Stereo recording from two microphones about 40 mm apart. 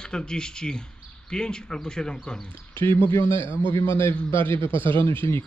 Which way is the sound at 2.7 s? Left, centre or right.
Left.